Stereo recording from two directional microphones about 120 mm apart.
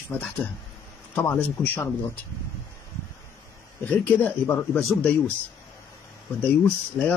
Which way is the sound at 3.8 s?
15° left (ahead or behind).